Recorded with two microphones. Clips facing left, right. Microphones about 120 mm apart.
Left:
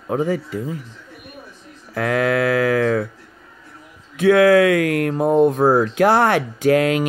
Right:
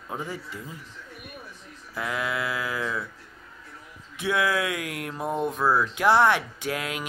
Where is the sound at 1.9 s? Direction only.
65° left (ahead or behind).